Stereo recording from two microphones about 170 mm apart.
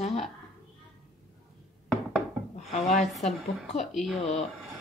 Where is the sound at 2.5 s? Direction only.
40° left (ahead or behind).